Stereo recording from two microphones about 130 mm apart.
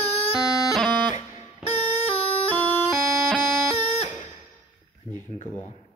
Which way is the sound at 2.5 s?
15° left (ahead or behind).